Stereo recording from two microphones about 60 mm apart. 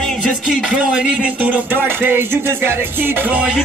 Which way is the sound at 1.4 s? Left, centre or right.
Right.